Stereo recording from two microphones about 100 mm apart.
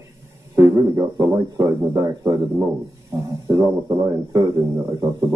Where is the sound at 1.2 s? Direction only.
35° right (ahead or behind).